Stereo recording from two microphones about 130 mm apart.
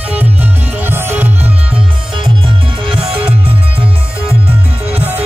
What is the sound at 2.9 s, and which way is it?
Music, 45° right (ahead or behind).